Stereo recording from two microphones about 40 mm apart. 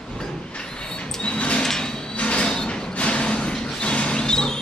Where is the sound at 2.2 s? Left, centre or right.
Left.